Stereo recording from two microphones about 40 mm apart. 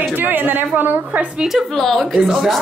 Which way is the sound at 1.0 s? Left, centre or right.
Right.